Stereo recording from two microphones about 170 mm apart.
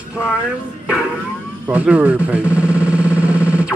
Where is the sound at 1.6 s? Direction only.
5° right (ahead or behind).